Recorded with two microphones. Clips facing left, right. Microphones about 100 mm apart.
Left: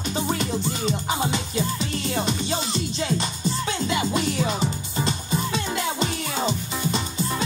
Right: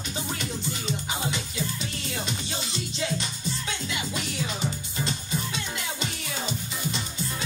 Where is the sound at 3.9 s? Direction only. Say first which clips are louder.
Left 11 dB; 40° left (ahead or behind).